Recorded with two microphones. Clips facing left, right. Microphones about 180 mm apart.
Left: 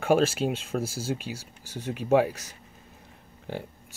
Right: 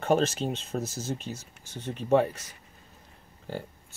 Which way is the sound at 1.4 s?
35° left (ahead or behind).